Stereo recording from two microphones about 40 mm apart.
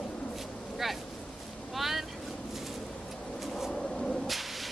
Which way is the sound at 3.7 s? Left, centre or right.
Centre.